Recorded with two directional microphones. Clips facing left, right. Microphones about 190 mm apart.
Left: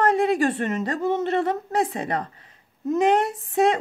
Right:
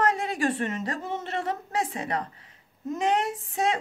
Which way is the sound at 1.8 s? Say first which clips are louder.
Left 5 dB; 35° left (ahead or behind).